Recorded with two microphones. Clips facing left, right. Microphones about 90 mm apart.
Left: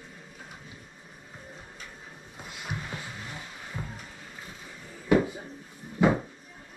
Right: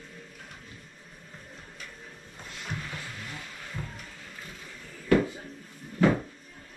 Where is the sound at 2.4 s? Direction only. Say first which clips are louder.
Left 1 dB; 15° left (ahead or behind).